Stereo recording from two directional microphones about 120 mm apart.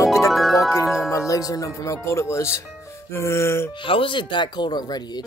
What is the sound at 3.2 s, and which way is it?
Music, 20° left (ahead or behind).